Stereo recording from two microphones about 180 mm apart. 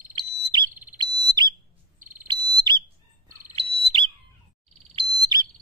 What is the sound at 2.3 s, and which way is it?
Fire alarm, 25° right (ahead or behind).